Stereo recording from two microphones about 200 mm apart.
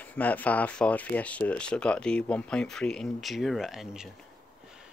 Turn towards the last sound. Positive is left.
turn(degrees=0)  # may be behind; listen again after turning